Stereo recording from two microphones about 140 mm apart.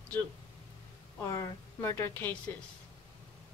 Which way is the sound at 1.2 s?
25° left (ahead or behind).